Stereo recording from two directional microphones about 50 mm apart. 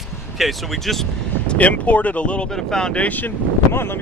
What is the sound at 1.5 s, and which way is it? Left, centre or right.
Speech, left.